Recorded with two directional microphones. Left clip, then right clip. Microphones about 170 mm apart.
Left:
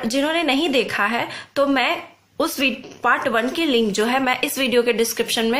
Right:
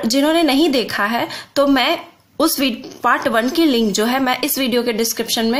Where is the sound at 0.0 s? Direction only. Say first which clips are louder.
Right 5 dB; 35° right (ahead or behind).